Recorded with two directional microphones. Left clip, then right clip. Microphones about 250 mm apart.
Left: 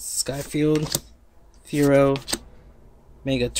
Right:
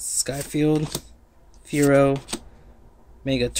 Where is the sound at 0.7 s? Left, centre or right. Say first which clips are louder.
Left 2 dB; left.